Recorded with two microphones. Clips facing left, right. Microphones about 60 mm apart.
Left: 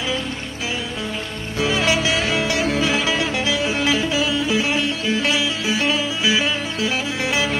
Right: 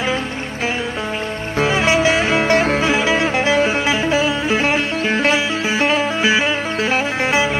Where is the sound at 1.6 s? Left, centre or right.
Right.